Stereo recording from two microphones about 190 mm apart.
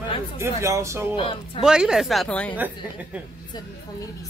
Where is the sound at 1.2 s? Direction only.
25° left (ahead or behind).